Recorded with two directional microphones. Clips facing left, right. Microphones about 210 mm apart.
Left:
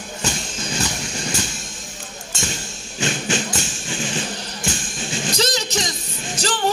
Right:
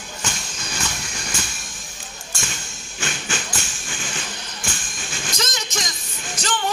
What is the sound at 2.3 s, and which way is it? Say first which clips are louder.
Music: left 5 dB; 25° left (ahead or behind).